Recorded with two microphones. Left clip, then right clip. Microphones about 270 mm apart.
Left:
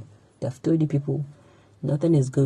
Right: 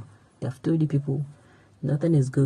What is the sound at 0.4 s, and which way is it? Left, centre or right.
Speech, centre.